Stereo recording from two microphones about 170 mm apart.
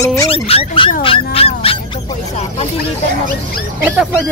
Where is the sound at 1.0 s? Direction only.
35° left (ahead or behind).